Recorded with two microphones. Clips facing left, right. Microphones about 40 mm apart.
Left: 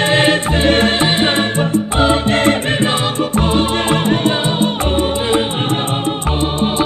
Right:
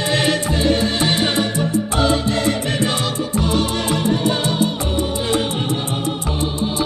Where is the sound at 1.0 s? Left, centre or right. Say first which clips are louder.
Left 4 dB; left.